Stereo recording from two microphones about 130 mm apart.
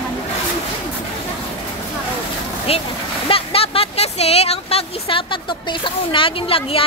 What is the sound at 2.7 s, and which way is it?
Speech, 50° left (ahead or behind).